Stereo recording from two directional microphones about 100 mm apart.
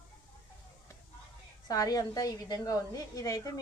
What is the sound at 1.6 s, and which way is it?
A woman's voice, 40° left (ahead or behind).